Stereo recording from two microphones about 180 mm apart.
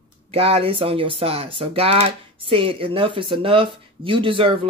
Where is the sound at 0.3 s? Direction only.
35° right (ahead or behind).